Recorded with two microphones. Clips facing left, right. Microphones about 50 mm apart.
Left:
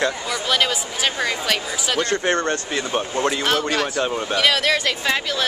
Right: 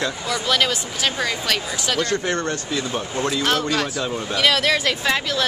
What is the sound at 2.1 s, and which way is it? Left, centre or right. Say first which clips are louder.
Speech: left 2 dB; left.